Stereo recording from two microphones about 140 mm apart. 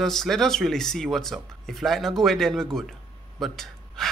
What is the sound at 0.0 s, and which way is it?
Speech, centre (ahead or behind).